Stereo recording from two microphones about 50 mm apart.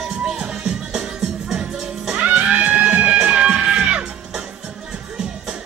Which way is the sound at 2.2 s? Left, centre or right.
Right.